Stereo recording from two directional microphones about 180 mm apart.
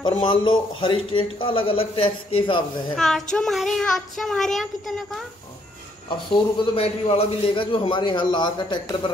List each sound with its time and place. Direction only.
0.2 s a man's voice: 25° left (ahead or behind)
3.0 s child singing: centre (ahead or behind)
6.0 s a man's voice: 30° left (ahead or behind)